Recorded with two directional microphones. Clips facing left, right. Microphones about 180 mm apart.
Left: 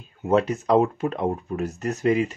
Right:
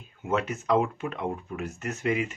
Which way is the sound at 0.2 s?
35° left (ahead or behind).